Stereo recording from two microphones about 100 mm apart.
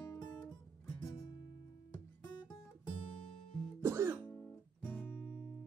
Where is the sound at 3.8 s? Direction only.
25° right (ahead or behind).